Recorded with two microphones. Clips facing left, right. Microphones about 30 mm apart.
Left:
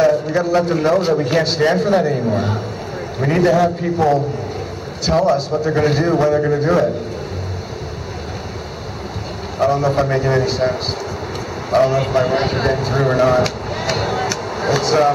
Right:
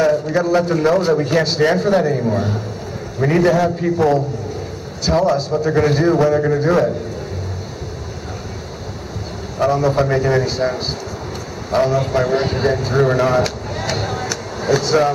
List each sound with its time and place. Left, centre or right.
0.0 s a man's voice: centre
5.0 s a man's voice: centre
9.6 s a man's voice: centre
12.3 s a man's voice: centre
13.7 s vehicle: centre